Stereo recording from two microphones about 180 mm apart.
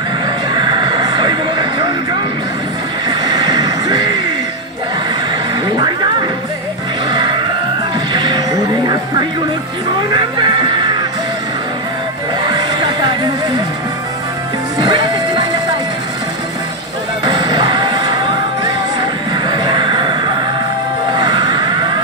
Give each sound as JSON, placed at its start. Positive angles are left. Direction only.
{"t": 0.6, "sound": "vehicle", "side_deg": -25}
{"t": 3.1, "sound": "neigh", "side_deg": -20}
{"t": 7.1, "sound": "a sound", "side_deg": -25}
{"t": 8.1, "sound": "music", "side_deg": -25}
{"t": 10.1, "sound": "music", "side_deg": -25}
{"t": 12.4, "sound": "a sound", "side_deg": -20}
{"t": 14.8, "sound": "music", "side_deg": -25}
{"t": 17.2, "sound": "music", "side_deg": -25}
{"t": 19.4, "sound": "music", "side_deg": -25}
{"t": 21.2, "sound": "a sound", "side_deg": -25}